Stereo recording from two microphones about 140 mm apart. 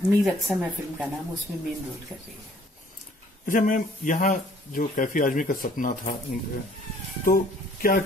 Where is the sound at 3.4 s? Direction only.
80° left.